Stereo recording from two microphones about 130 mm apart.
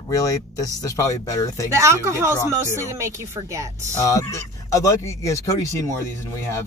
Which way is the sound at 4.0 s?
25° left (ahead or behind).